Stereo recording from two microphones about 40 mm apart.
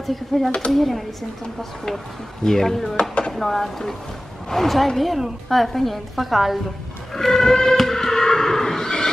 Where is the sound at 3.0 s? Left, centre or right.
Left.